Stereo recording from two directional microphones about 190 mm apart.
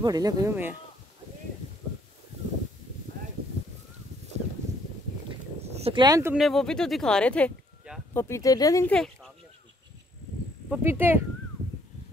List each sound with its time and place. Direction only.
0.0 s speech: 20° right (ahead or behind)
5.7 s speech: 30° right (ahead or behind)
6.3 s speech: centre (ahead or behind); by 8.9 s 15° left (ahead or behind)
8.9 s speech: centre (ahead or behind)
10.7 s speech: 10° right (ahead or behind)